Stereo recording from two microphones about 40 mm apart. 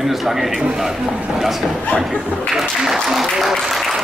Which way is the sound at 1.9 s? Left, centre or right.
Left.